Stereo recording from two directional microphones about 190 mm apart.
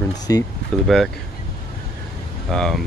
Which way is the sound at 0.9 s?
5° left (ahead or behind).